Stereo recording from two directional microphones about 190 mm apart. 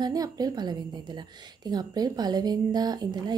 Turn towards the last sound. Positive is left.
turn(degrees=-20)  # may be behind; listen again after turning